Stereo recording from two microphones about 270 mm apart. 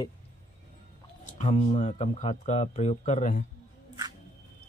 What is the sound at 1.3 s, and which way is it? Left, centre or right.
Speech, left.